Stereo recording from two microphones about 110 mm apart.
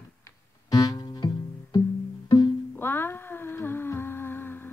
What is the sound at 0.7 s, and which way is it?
Music, 35° left (ahead or behind).